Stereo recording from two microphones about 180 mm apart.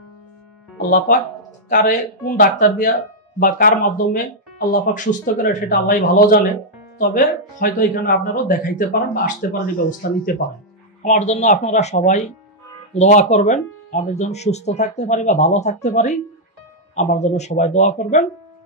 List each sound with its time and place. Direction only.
0.8 s speech: 50° left (ahead or behind)
11.0 s speech: 40° left (ahead or behind)